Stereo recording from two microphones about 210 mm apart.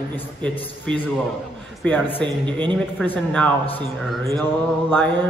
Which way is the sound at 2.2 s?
20° right (ahead or behind).